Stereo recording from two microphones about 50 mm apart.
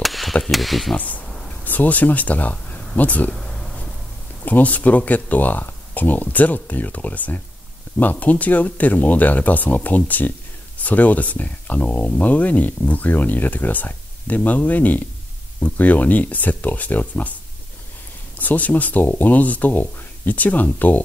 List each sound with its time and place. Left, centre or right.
0.0 s chop: centre
0.9 s speech: left
3.3 s a sound: centre
4.5 s speech: left
18.4 s speech: left